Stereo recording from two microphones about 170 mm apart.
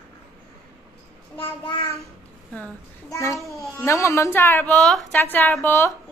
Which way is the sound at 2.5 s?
10° left (ahead or behind).